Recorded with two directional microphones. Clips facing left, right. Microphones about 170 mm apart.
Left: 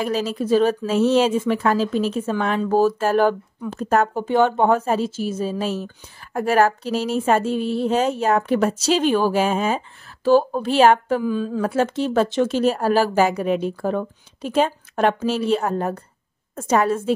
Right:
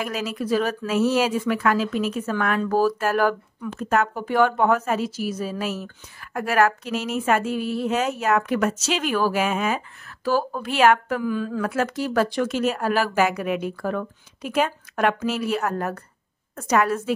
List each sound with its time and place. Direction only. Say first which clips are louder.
0.0 s speech: left 5 dB; 30° left (ahead or behind)